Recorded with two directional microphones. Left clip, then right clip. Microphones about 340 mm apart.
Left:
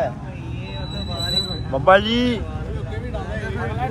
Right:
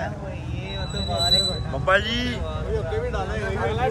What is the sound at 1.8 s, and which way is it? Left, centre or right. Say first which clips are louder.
Speech: left 6 dB; centre.